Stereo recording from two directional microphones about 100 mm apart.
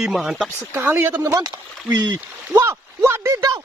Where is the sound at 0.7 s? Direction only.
20° right (ahead or behind).